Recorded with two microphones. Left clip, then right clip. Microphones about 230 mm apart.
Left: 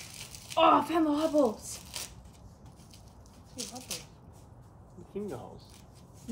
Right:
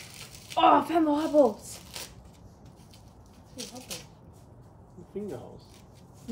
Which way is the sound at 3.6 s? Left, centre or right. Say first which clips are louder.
Even; centre.